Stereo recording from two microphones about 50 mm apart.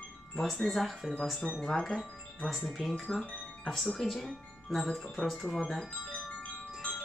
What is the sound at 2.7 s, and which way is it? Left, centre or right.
Speech, centre.